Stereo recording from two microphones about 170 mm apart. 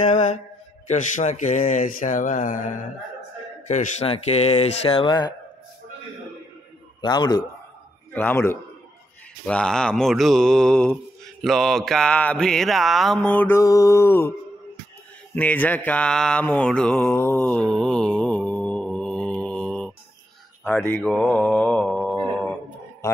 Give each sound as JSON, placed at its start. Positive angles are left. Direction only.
{"t": 0.0, "sound": "mantra", "side_deg": 40}
{"t": 0.8, "sound": "speech", "side_deg": 45}
{"t": 7.0, "sound": "a man's voice", "side_deg": 25}
{"t": 8.1, "sound": "a man's voice", "side_deg": 10}
{"t": 9.5, "sound": "mantra", "side_deg": 5}
{"t": 15.3, "sound": "mantra", "side_deg": 10}